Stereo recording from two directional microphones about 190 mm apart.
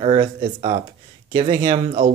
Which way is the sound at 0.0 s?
30° right (ahead or behind).